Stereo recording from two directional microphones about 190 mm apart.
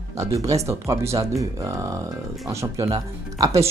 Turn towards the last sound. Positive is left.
turn(degrees=-15)  # may be behind; listen again after turning